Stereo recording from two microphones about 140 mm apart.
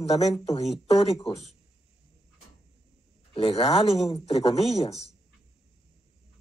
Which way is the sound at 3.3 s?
45° left (ahead or behind).